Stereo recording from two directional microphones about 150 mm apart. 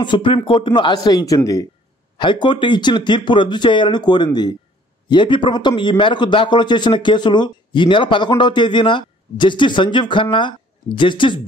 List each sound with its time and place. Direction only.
0.0 s speech: 30° left (ahead or behind)